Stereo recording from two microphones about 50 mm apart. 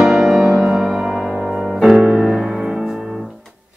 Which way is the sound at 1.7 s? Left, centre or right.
Centre.